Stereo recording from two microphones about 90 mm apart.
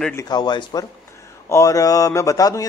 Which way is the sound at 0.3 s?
55° left (ahead or behind).